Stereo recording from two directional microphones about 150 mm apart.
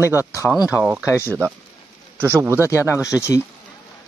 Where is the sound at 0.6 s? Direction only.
20° left (ahead or behind).